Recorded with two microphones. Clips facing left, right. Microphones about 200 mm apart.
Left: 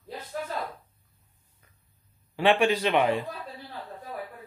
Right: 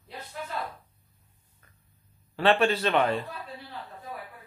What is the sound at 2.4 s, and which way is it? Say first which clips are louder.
Speech: left 1 dB; 10° left (ahead or behind).